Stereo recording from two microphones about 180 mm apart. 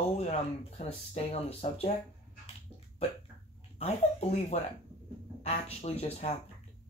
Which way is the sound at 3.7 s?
35° left (ahead or behind).